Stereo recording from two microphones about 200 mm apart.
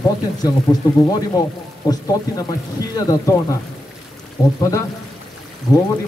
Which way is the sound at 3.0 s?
15° left (ahead or behind).